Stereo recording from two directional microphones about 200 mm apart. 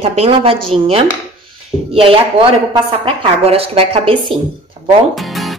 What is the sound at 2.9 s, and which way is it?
A woman's voice, 30° right (ahead or behind).